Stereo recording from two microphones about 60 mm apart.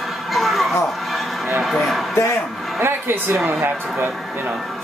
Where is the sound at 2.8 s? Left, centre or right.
Right.